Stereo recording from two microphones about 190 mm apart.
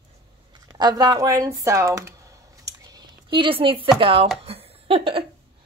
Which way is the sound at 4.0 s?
30° right (ahead or behind).